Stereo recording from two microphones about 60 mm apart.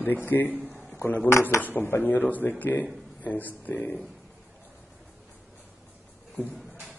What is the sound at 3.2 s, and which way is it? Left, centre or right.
Speech, left.